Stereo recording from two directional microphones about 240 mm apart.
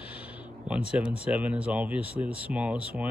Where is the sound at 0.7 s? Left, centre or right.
Centre.